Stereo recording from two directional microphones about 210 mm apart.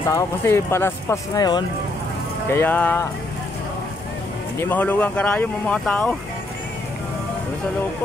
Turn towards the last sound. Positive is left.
turn(degrees=5)  # may be behind; listen again after turning